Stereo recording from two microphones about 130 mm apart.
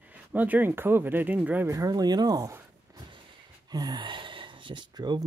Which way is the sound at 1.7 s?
25° right (ahead or behind).